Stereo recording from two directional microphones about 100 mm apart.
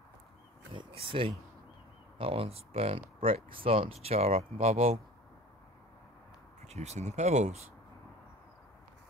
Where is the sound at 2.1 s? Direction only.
70° right (ahead or behind); by 5.0 s 90° right.